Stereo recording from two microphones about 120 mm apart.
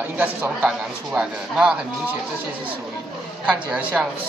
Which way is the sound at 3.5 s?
10° right (ahead or behind).